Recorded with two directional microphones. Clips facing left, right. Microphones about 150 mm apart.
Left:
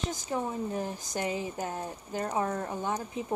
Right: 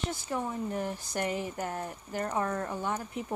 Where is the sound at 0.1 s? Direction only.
15° left (ahead or behind).